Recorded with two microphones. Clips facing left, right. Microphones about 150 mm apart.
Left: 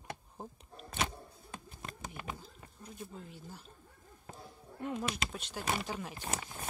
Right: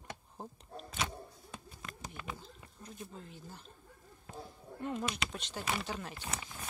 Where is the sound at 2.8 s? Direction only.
5° left (ahead or behind).